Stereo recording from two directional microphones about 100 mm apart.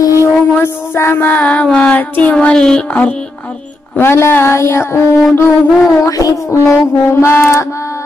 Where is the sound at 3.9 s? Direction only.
25° left (ahead or behind).